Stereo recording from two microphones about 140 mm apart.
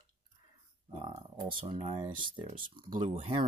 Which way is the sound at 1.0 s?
40° right (ahead or behind).